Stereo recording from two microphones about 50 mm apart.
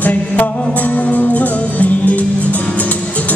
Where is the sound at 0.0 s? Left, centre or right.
Left.